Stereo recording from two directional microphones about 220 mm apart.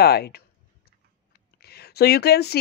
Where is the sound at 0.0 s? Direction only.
45° left (ahead or behind).